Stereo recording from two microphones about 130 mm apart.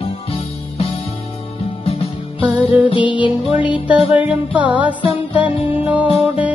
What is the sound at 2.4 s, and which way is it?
Music, 10° right (ahead or behind).